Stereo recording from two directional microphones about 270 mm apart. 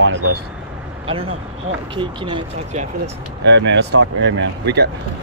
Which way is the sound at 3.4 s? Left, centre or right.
Right.